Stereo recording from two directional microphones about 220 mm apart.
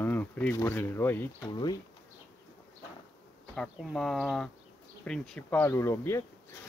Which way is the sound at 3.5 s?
Centre (ahead or behind).